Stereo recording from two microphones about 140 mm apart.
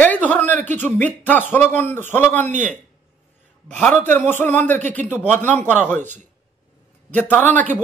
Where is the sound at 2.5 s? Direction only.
60° right (ahead or behind).